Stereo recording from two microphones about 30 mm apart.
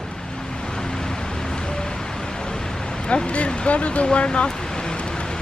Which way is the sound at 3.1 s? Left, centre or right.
Left.